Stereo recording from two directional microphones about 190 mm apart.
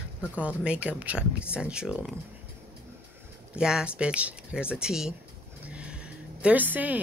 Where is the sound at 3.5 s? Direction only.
5° right (ahead or behind).